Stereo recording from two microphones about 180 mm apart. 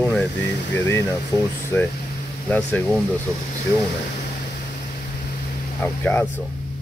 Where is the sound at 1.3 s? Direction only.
20° left (ahead or behind).